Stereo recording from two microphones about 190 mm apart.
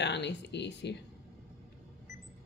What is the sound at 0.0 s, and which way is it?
Speech, 65° left (ahead or behind).